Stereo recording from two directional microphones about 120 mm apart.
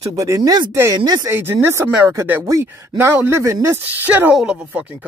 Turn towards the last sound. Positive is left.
turn(degrees=-10)  # may be behind; listen again after turning